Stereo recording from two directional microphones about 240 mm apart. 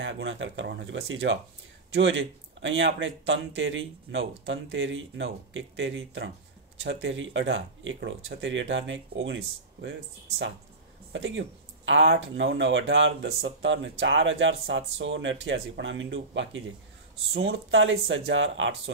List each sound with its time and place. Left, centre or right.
0.0 s speech: right
11.1 s speech: right